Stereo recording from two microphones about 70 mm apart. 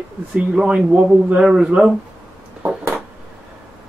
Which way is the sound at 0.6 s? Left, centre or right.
Centre.